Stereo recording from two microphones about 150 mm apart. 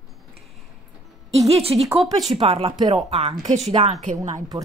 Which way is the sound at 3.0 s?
40° right (ahead or behind).